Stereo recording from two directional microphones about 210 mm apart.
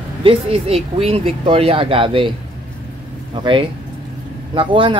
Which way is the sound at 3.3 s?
25° right (ahead or behind).